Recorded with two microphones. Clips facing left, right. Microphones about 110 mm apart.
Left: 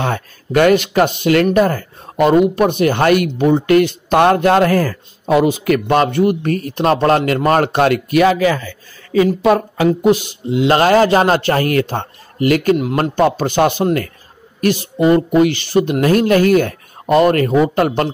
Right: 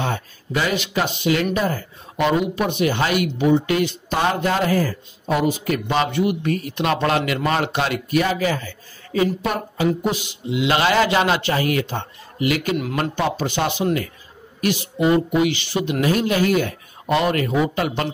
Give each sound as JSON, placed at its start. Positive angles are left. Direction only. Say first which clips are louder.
{"t": 0.0, "sound": "speech", "louder": "left 5 dB", "side_deg": 60}
{"t": 5.9, "sound": "speech", "louder": "left 3 dB", "side_deg": 50}
{"t": 8.1, "sound": "a woman's voice", "louder": "left 7 dB", "side_deg": 90}
{"t": 10.0, "sound": "speech", "louder": "left 10 dB", "side_deg": 50}